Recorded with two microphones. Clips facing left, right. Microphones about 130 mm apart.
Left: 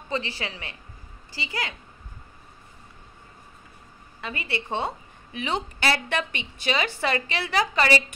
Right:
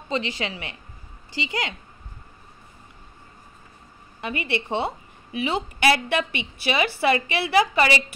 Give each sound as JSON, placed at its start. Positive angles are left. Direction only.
{"t": 0.1, "sound": "a woman's voice", "side_deg": -15}
{"t": 4.2, "sound": "a woman's voice", "side_deg": -15}